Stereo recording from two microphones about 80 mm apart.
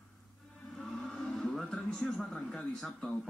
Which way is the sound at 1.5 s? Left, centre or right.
Centre.